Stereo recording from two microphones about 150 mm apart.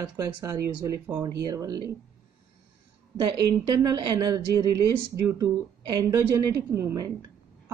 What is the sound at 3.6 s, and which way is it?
Speech, 25° right (ahead or behind).